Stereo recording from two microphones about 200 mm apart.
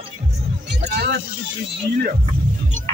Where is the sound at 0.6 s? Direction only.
55° right (ahead or behind).